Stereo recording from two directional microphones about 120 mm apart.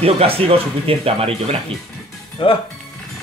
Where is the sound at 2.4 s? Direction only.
45° left (ahead or behind).